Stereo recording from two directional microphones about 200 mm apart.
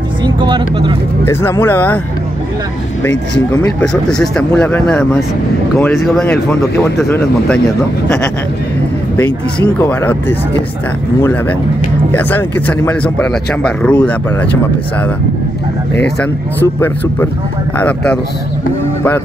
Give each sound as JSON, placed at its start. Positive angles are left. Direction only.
{"t": 0.2, "sound": "speech", "side_deg": -25}
{"t": 1.2, "sound": "speech", "side_deg": 10}
{"t": 3.6, "sound": "speech", "side_deg": 5}
{"t": 9.1, "sound": "speech", "side_deg": 10}
{"t": 12.1, "sound": "speech", "side_deg": 10}
{"t": 17.7, "sound": "speech", "side_deg": 5}